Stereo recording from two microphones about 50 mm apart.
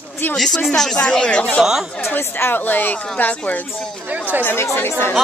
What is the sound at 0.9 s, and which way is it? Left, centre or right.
Speech, centre.